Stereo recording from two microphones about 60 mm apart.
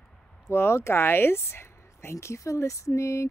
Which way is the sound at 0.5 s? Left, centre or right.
Left.